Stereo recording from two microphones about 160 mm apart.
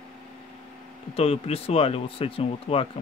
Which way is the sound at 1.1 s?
40° left (ahead or behind).